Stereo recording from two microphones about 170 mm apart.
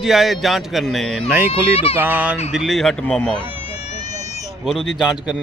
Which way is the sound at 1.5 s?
35° left (ahead or behind).